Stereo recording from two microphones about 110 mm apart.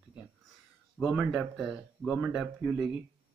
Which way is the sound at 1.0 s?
10° right (ahead or behind).